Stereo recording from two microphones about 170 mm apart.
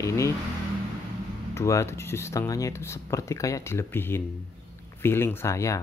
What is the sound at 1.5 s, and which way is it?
Speech, 15° left (ahead or behind).